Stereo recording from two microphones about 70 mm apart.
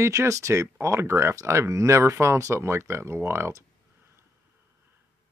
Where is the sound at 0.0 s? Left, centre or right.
Right.